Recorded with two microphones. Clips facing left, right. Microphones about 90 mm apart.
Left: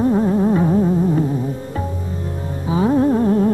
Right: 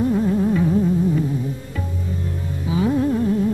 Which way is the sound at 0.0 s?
35° left (ahead or behind).